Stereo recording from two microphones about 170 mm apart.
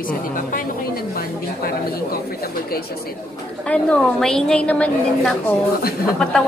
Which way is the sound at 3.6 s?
5° left (ahead or behind).